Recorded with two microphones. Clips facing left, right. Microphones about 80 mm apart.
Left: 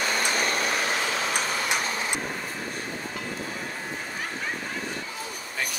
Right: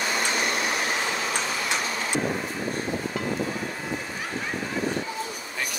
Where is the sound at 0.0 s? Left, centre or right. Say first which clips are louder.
Even; left.